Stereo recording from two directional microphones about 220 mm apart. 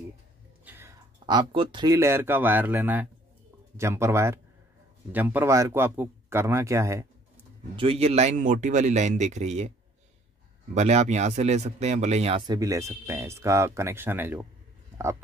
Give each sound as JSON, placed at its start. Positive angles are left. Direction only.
{"t": 0.7, "sound": "a man's voice", "side_deg": -10}
{"t": 7.7, "sound": "speech", "side_deg": -25}
{"t": 10.7, "sound": "speech", "side_deg": -30}
{"t": 15.0, "sound": "a sound", "side_deg": -10}